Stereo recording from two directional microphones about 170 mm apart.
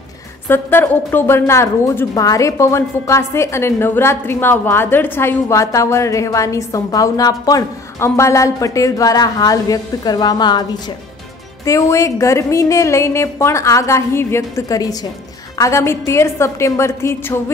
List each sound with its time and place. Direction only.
0.5 s a woman's voice: 10° left (ahead or behind)
11.6 s a woman's voice: 20° left (ahead or behind)